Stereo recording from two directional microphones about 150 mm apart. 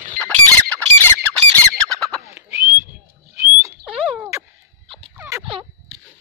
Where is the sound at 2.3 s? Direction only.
15° right (ahead or behind).